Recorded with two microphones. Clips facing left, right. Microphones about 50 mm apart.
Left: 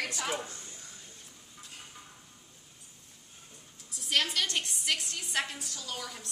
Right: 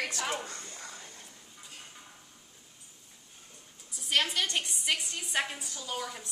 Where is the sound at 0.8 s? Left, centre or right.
Right.